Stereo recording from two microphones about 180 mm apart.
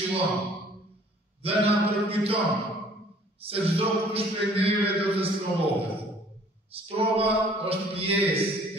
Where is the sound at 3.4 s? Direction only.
30° right (ahead or behind).